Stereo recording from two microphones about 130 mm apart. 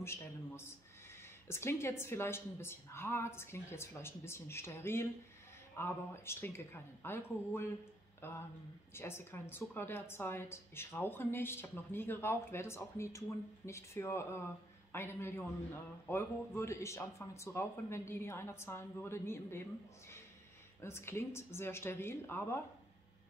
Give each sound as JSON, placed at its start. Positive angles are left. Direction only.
{"t": 0.0, "sound": "a woman's voice", "side_deg": 20}
{"t": 8.2, "sound": "a sound", "side_deg": 20}
{"t": 8.9, "sound": "a woman's voice", "side_deg": 20}
{"t": 20.8, "sound": "speech", "side_deg": 20}